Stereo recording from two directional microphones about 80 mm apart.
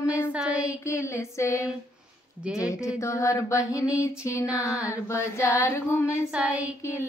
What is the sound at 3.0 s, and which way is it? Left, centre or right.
Mantra, left.